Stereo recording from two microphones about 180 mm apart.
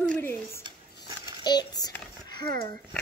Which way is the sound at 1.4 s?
25° left (ahead or behind).